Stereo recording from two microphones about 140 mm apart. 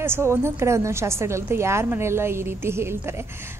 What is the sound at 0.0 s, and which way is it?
A woman's voice, 15° right (ahead or behind).